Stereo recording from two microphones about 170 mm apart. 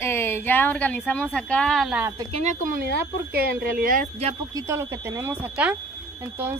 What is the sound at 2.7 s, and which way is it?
Speech, 60° right (ahead or behind).